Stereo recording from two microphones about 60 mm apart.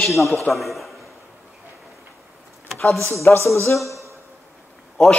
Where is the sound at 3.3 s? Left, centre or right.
Left.